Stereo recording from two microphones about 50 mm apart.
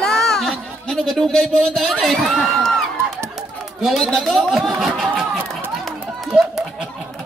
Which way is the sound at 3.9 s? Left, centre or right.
Centre.